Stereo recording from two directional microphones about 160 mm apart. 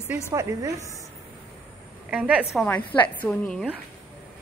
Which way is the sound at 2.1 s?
10° right (ahead or behind).